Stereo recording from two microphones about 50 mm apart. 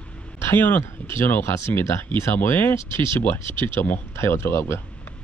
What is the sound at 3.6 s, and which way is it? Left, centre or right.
Speech, left.